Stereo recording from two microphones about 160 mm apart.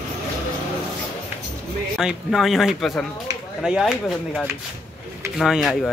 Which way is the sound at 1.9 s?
Centre (ahead or behind).